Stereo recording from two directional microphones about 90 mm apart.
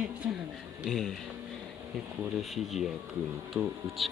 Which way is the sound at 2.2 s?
Centre (ahead or behind).